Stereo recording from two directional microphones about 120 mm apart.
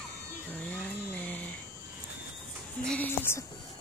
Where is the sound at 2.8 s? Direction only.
15° left (ahead or behind).